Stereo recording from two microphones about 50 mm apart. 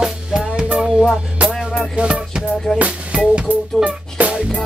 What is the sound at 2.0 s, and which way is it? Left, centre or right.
Music, centre.